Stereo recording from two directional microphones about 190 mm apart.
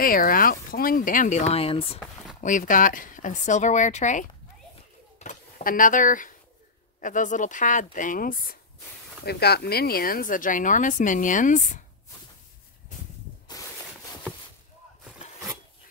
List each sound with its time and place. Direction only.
0.0 s speech: 50° left (ahead or behind); by 2.0 s 30° left (ahead or behind)
2.4 s speech: 45° left (ahead or behind)
13.6 s a sound: 20° left (ahead or behind)